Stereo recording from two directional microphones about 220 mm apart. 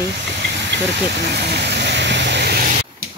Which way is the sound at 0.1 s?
50° right (ahead or behind).